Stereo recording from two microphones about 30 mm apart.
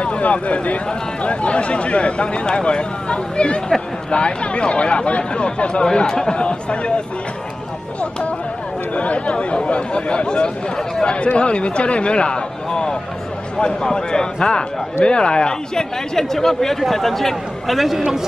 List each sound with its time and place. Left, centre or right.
0.0 s speech: left
6.0 s speech: centre
6.3 s speech: left
8.9 s speech: left
11.3 s a man's voice: left; by 18.0 s centre